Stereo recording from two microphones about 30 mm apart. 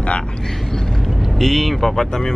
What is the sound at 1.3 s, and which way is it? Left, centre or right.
Speech, centre.